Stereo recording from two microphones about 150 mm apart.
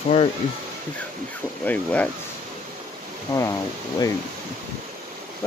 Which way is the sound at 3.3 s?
20° left (ahead or behind).